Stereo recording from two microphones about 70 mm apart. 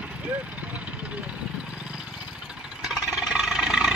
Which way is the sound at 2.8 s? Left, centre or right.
Centre.